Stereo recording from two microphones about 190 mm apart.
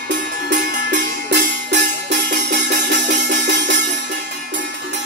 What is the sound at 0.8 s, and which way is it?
Music, 65° right (ahead or behind).